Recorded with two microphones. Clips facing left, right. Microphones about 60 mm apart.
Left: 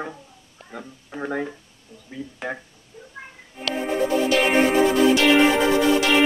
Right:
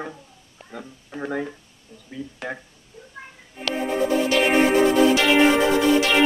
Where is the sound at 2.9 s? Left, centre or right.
Left.